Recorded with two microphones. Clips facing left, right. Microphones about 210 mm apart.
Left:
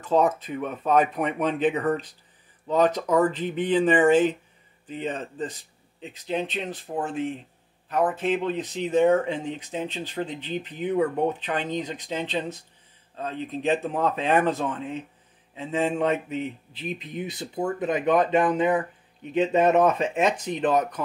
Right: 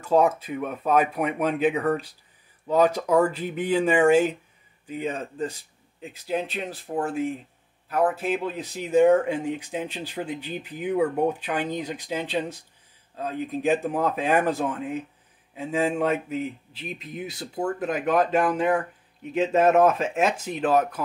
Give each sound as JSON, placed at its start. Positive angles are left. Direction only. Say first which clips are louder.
{"t": 0.0, "sound": "speech", "louder": "right 1 dB", "side_deg": -10}